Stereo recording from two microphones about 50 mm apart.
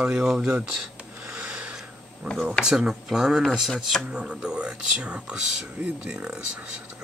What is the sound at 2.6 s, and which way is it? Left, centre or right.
Speech, centre.